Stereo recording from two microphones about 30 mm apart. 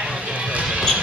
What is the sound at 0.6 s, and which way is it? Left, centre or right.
Basketball bounce, right.